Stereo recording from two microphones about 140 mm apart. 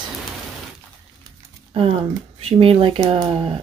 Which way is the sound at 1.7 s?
40° right (ahead or behind).